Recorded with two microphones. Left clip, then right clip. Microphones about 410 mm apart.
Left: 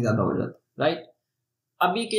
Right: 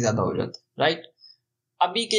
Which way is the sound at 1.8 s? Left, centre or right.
Centre.